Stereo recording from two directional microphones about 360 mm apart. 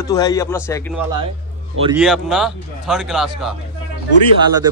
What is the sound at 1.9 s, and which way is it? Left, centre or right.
A man's voice, centre.